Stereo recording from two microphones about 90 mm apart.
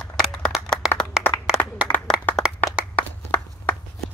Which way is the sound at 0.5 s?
5° right (ahead or behind).